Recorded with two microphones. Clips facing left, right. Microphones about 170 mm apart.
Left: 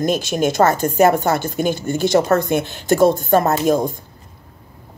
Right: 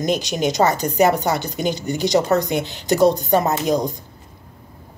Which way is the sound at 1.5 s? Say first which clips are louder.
Left 3 dB; 50° left (ahead or behind).